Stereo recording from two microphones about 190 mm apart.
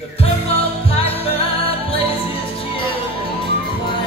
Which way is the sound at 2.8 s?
25° left (ahead or behind).